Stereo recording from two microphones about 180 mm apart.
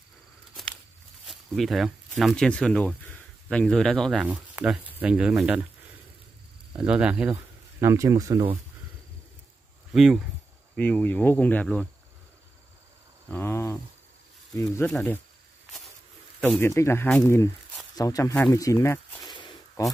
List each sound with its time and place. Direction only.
1.2 s speech: centre (ahead or behind)
6.8 s speech: 5° right (ahead or behind)
7.8 s speech: 15° right (ahead or behind)
9.9 s speech: centre (ahead or behind)
10.8 s speech: 10° left (ahead or behind)
13.3 s cricket: 15° left (ahead or behind)
14.5 s speech: 20° left (ahead or behind)
14.9 s speech: 5° left (ahead or behind)
16.3 s speech: 5° left (ahead or behind)
19.3 s a sound: 25° left (ahead or behind)